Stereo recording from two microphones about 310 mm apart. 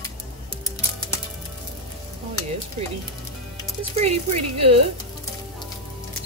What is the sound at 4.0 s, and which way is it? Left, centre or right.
Speech, right.